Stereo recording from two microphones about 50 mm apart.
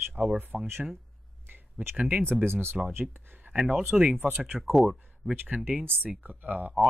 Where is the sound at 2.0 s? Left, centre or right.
Right.